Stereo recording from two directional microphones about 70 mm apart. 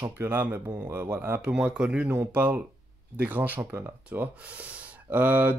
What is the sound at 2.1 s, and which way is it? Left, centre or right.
Speech, right.